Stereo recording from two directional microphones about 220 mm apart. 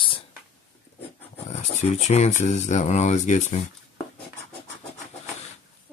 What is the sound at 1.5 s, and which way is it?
Speech, 30° left (ahead or behind).